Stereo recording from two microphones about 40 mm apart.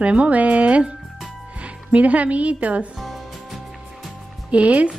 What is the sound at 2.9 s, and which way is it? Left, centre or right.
Music, centre.